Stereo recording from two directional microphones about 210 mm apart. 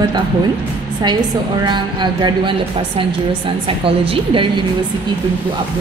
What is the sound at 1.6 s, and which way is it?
A woman's voice, 20° right (ahead or behind).